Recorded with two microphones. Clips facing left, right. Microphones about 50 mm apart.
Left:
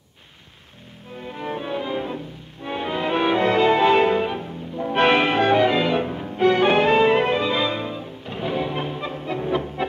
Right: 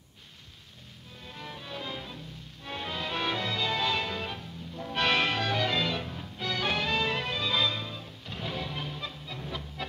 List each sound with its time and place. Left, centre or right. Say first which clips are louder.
1.1 s music: left 14 dB; left